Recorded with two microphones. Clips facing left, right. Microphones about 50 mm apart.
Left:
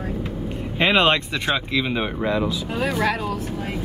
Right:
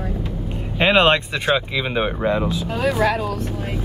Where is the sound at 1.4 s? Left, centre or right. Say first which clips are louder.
Right 2 dB; centre.